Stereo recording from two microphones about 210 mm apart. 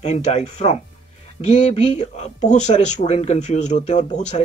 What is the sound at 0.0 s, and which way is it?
Speech, 30° left (ahead or behind).